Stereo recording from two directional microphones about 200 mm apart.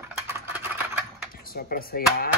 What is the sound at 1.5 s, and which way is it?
Speech, 50° left (ahead or behind).